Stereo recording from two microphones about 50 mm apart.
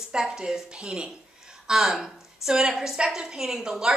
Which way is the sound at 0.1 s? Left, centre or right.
Centre.